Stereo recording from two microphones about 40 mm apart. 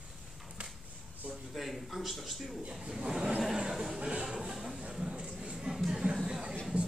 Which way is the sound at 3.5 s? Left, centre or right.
Centre.